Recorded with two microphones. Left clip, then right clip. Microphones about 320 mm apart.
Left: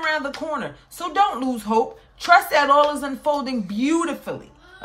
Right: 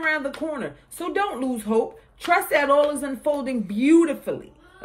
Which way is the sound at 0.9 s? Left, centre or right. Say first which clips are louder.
Left 5 dB; left.